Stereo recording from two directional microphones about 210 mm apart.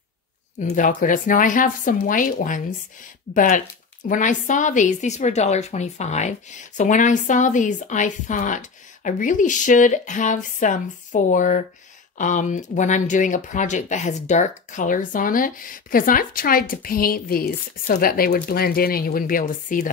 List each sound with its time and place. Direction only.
0.6 s a woman's voice: 35° left (ahead or behind)